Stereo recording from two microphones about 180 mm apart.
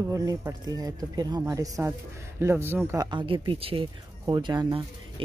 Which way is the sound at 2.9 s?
25° right (ahead or behind).